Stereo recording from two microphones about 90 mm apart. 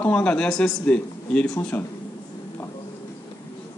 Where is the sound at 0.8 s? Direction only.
15° left (ahead or behind).